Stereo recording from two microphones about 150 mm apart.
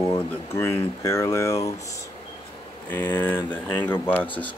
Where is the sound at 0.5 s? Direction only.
15° left (ahead or behind).